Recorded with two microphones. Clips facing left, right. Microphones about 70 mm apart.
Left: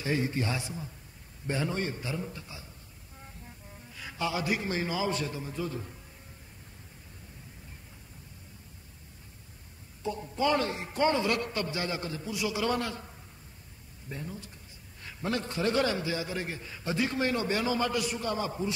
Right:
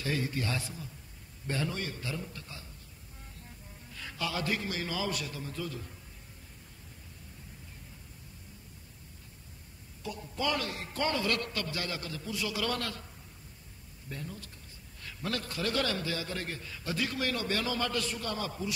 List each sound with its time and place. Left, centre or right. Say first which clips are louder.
0.0 s a man's voice: left 3 dB; left
3.9 s music: even; centre
4.2 s a man's voice: left 3 dB; centre
10.0 s a man's voice: left 5 dB; left
14.0 s a man's voice: left 2 dB; centre